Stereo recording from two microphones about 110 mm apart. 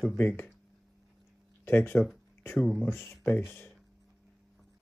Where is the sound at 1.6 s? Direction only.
20° left (ahead or behind).